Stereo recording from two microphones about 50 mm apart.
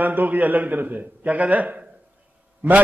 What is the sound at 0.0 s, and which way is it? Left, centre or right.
A man's voice, right.